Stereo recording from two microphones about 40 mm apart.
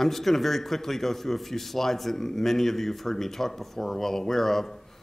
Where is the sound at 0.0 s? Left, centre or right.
Centre.